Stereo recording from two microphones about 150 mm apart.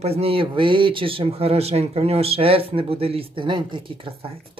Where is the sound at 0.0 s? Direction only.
40° right (ahead or behind).